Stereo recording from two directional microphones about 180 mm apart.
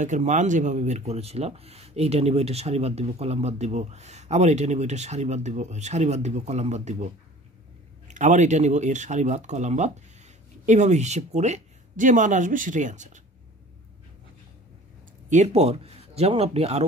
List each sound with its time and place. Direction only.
0.0 s speech: 45° right (ahead or behind)
8.1 s speech: 40° right (ahead or behind)
15.2 s speech: 40° right (ahead or behind)